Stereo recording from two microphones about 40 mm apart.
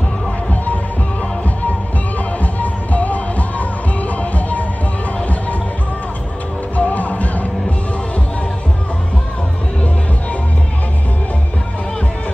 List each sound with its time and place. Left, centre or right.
2.4 s music: left
6.8 s music: left